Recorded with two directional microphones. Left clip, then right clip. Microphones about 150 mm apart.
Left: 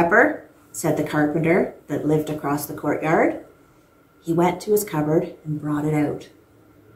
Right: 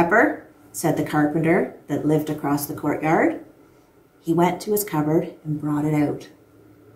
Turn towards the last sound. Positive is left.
turn(degrees=-15)  # may be behind; listen again after turning